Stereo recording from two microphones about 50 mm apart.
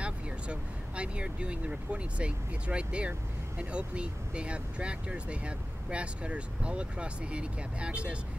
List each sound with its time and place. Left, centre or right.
0.0 s speech: right